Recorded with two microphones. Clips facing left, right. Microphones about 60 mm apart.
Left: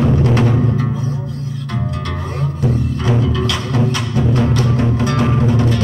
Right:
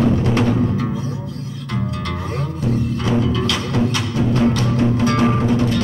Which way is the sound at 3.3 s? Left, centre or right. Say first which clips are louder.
Left 1 dB; left.